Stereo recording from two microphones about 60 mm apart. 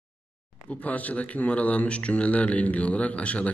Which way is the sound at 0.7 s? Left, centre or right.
Left.